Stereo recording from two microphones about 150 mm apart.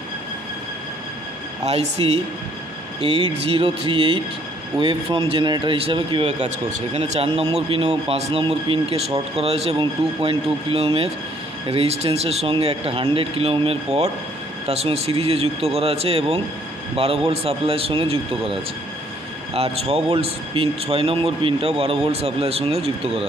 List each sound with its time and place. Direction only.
1.6 s speech: 45° right (ahead or behind)